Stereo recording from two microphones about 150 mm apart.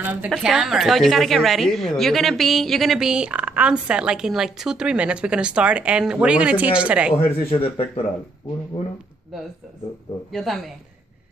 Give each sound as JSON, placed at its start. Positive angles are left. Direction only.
{"t": 0.0, "sound": "a sound", "side_deg": -10}
{"t": 0.3, "sound": "a woman's voice", "side_deg": -5}
{"t": 7.6, "sound": "speech", "side_deg": 35}
{"t": 10.3, "sound": "a woman's voice", "side_deg": 0}